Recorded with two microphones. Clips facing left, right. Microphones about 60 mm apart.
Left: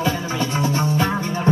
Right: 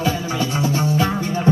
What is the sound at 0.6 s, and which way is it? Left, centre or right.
Music, left.